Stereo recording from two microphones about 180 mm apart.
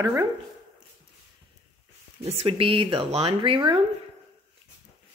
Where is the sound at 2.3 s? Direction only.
30° right (ahead or behind).